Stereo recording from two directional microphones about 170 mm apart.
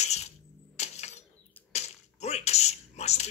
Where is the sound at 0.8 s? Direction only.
40° left (ahead or behind).